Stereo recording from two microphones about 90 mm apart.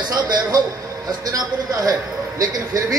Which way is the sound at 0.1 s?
45° right (ahead or behind).